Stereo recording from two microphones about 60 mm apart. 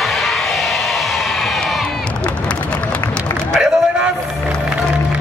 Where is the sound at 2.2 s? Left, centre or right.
Centre.